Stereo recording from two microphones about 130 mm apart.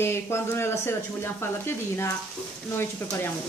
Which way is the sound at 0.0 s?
20° left (ahead or behind).